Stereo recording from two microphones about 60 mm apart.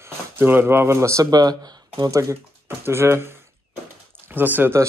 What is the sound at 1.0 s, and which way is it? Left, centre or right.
Speech, right.